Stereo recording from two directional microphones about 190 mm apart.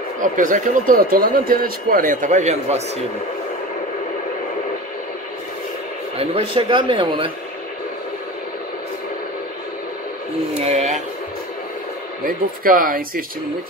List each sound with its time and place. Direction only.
0.2 s speech: 45° right (ahead or behind)
6.1 s speech: 30° right (ahead or behind)
10.6 s speech: 35° right (ahead or behind)
12.3 s speech: 45° right (ahead or behind)